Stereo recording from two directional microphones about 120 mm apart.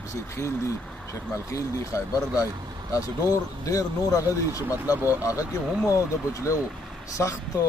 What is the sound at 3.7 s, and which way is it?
Speech, 30° left (ahead or behind).